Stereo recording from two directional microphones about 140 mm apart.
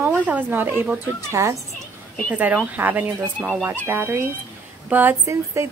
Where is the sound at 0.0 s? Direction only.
15° right (ahead or behind).